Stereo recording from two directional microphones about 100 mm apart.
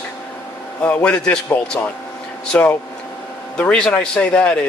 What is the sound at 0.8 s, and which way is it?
Speech, 15° left (ahead or behind).